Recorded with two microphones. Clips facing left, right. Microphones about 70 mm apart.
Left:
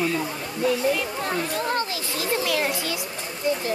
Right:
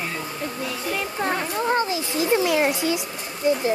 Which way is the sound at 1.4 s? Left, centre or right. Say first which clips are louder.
Right 3 dB; right.